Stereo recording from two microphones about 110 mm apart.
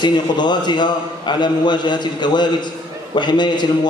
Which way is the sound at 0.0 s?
40° left (ahead or behind).